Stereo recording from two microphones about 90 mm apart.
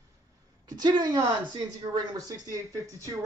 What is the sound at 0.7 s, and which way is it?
Speech, 50° right (ahead or behind).